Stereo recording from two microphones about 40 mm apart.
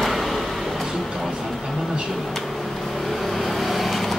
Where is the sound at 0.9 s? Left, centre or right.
Centre.